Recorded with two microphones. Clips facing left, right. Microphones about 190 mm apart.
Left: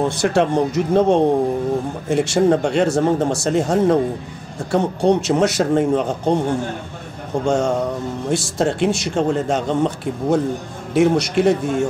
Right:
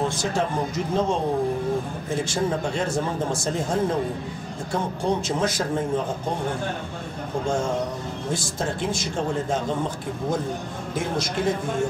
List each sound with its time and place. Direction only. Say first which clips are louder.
0.1 s speech: left 8 dB; 70° left (ahead or behind)
7.4 s speech: left 7 dB; 75° left (ahead or behind)